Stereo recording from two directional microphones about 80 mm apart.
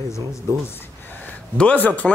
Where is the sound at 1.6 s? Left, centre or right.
Centre.